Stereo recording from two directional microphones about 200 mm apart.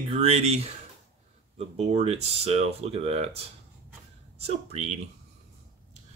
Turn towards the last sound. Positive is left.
turn(degrees=-30)  # may be behind; listen again after turning